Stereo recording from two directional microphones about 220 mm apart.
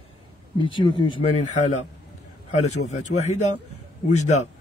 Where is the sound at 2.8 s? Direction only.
30° left (ahead or behind).